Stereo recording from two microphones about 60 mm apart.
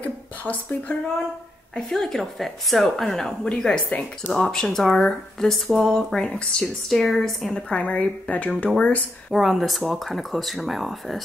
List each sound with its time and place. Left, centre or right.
0.0 s a sound: left
1.8 s a woman's voice: centre
6.6 s speech: centre
7.5 s a woman's voice: centre
9.3 s speech: centre